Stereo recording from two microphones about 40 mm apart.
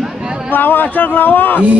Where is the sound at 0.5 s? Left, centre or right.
Left.